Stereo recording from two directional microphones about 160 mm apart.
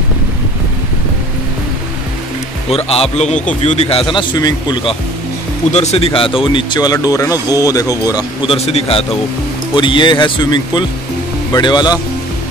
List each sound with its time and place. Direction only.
2.7 s speech: 40° left (ahead or behind)
5.7 s speech: 45° left (ahead or behind); by 8.3 s 20° left (ahead or behind)
8.5 s speech: 40° left (ahead or behind)